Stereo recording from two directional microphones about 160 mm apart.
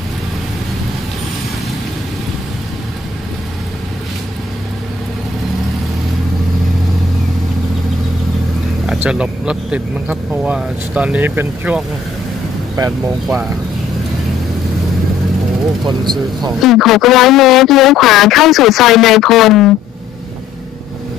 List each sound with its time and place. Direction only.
8.8 s speech: 5° right (ahead or behind)
15.9 s speech: 25° right (ahead or behind)
16.6 s speech: centre (ahead or behind)